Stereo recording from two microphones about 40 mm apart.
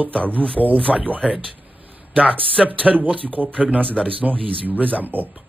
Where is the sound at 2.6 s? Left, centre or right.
Right.